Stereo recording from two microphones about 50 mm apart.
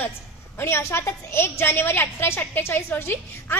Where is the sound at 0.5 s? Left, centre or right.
Left.